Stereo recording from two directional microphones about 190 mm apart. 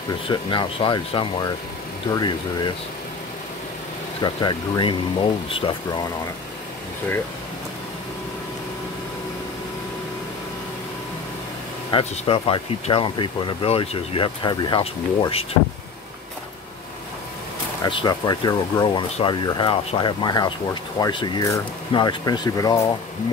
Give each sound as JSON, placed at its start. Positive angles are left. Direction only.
{"t": 0.3, "sound": "speech", "side_deg": 25}
{"t": 4.2, "sound": "speech", "side_deg": 25}
{"t": 11.9, "sound": "speech", "side_deg": 30}
{"t": 17.8, "sound": "speech", "side_deg": 25}